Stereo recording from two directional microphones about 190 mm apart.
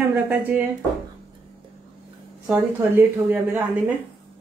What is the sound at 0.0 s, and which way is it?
Speech, 10° right (ahead or behind).